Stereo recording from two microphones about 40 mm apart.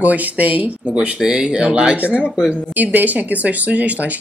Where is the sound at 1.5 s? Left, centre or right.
Right.